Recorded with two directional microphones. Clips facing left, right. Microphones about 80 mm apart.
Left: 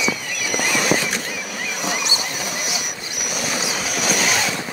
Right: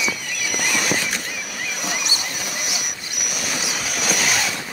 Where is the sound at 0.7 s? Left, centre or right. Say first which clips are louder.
Left 4 dB; left.